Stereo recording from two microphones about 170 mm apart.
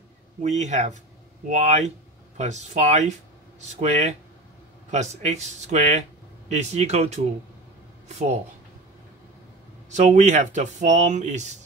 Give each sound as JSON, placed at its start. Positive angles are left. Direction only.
{"t": 0.4, "sound": "speech", "side_deg": -45}
{"t": 9.8, "sound": "speech", "side_deg": -45}